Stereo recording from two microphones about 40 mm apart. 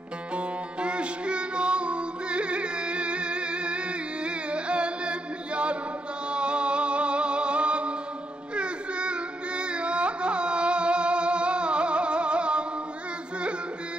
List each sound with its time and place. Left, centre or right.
0.4 s music: right
8.5 s carnatic music: right